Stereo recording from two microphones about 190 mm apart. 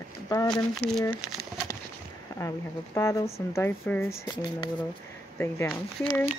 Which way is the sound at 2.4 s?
15° left (ahead or behind).